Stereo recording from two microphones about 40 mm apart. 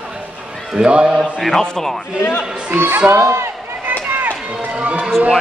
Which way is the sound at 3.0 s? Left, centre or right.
Right.